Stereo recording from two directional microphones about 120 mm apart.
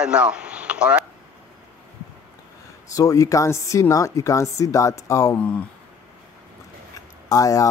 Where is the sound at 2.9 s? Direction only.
30° left (ahead or behind).